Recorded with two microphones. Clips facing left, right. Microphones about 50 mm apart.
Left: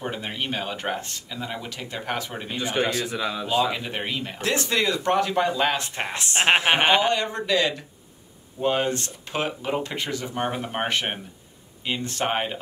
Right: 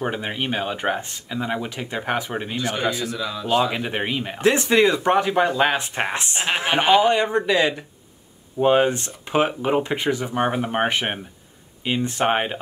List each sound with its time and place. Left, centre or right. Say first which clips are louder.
0.0 s speech: right 4 dB; centre
2.6 s speech: left 1 dB; centre
3.4 s speech: right 5 dB; right
6.3 s speech: left 4 dB; left
7.0 s speech: right 5 dB; right